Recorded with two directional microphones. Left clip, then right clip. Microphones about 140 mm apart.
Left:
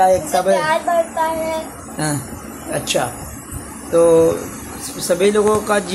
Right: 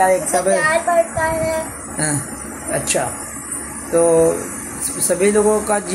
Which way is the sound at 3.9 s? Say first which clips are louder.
Left 2 dB; 5° left (ahead or behind).